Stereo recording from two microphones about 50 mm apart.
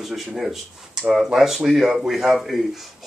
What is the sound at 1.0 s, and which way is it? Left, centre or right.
Speech, centre.